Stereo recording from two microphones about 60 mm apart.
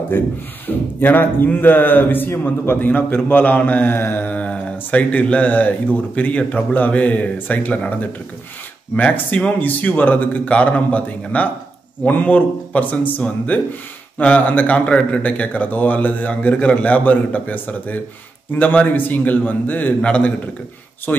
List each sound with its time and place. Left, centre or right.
0.1 s a man's voice: left